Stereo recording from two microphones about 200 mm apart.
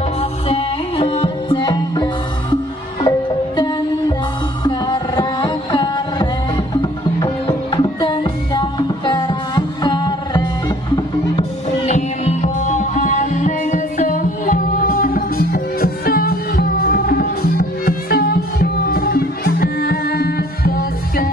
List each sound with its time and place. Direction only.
0.2 s music: 30° left (ahead or behind)
11.9 s music: 35° left (ahead or behind)